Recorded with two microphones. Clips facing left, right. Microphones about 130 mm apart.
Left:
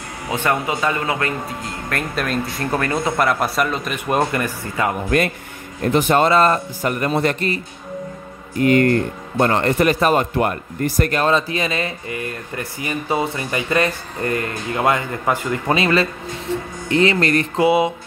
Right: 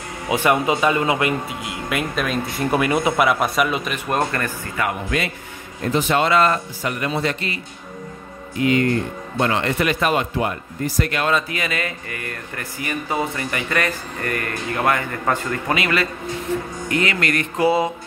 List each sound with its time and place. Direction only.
0.3 s speech: 15° right (ahead or behind)
3.3 s a man's voice: 5° right (ahead or behind); by 4.8 s 15° left (ahead or behind)
5.1 s speech: 50° left (ahead or behind)
10.3 s speech: 55° left (ahead or behind); by 15.6 s 20° left (ahead or behind)
15.7 s speech: 30° left (ahead or behind)
17.6 s music: 15° left (ahead or behind)